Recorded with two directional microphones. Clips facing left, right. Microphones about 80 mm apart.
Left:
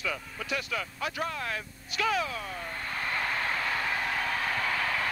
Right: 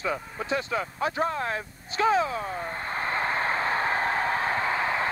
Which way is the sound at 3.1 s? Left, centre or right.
Right.